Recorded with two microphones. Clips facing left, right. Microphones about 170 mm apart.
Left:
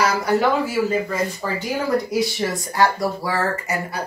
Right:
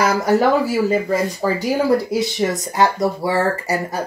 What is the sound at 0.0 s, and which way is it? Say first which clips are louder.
Speech: right 3 dB; 50° right (ahead or behind).